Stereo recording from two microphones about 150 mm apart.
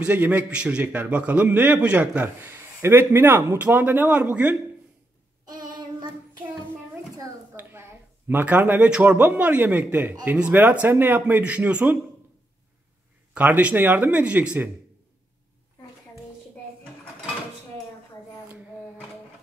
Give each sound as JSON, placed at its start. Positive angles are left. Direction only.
{"t": 0.0, "sound": "a man's voice", "side_deg": -10}
{"t": 5.4, "sound": "child singing", "side_deg": -65}
{"t": 7.5, "sound": "a man's voice", "side_deg": -15}
{"t": 13.3, "sound": "a man's voice", "side_deg": -10}